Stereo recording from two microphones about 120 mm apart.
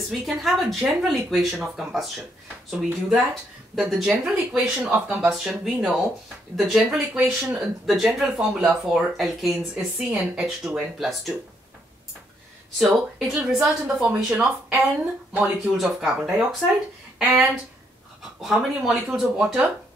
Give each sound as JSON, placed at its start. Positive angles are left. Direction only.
{"t": 0.3, "sound": "speech", "side_deg": 0}
{"t": 12.7, "sound": "speech", "side_deg": 0}
{"t": 17.2, "sound": "speech", "side_deg": -15}
{"t": 18.4, "sound": "speech", "side_deg": -5}